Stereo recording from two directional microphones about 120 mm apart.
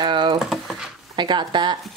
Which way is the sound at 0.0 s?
40° right (ahead or behind).